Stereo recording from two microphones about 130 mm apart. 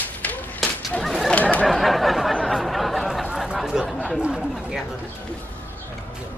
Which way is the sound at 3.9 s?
5° left (ahead or behind).